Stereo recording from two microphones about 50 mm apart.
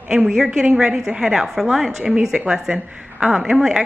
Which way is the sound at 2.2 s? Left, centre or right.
Centre.